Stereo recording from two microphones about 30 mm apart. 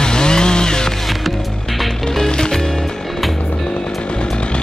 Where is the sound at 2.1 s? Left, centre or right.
Left.